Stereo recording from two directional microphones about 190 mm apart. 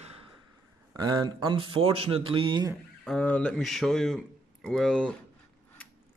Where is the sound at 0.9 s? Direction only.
20° right (ahead or behind).